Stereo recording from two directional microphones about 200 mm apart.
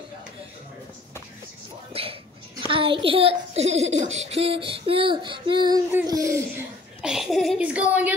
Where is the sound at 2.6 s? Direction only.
25° right (ahead or behind); by 8.1 s 5° right (ahead or behind).